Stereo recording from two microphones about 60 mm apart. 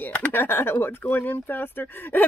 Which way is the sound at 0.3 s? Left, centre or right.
Left.